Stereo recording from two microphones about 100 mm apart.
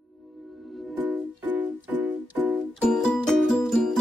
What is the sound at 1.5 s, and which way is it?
Music, 20° right (ahead or behind).